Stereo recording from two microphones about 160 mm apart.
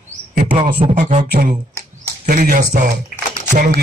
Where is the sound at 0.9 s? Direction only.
50° right (ahead or behind).